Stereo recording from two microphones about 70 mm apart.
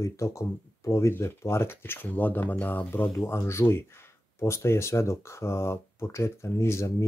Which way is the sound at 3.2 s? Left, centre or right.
Left.